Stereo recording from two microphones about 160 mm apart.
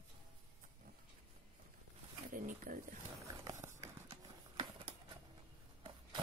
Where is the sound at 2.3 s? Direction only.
60° right (ahead or behind).